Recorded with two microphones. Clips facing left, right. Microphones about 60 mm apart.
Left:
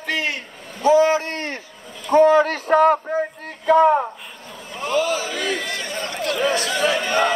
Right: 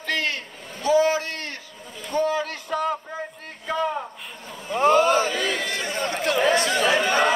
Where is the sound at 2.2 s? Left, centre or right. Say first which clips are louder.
Left 10 dB; left.